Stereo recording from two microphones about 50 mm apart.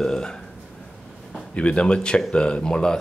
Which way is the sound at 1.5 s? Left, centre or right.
Left.